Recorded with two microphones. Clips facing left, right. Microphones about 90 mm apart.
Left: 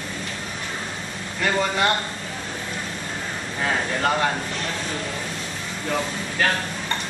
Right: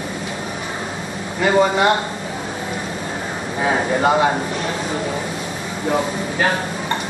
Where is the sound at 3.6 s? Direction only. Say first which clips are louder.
Right 6 dB; 15° right (ahead or behind).